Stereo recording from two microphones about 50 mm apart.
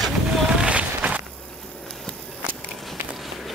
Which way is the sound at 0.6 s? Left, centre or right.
Right.